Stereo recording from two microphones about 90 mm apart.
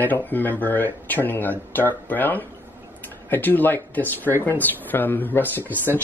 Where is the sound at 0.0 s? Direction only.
20° left (ahead or behind).